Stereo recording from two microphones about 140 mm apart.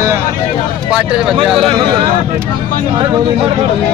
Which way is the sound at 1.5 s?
40° right (ahead or behind).